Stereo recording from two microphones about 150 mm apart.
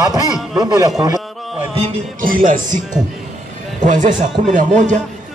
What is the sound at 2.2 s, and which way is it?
Speech, 65° right (ahead or behind).